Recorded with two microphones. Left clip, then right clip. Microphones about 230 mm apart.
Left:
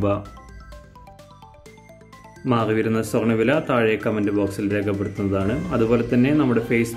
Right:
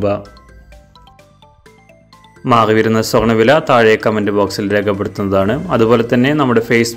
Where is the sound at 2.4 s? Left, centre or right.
Centre.